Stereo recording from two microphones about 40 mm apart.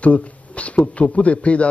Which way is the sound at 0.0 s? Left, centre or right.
Left.